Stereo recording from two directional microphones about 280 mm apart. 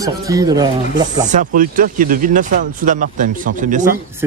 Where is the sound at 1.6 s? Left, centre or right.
Right.